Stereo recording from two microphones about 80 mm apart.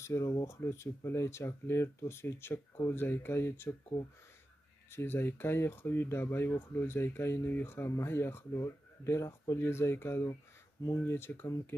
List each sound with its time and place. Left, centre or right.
0.0 s speech: left
4.9 s speech: left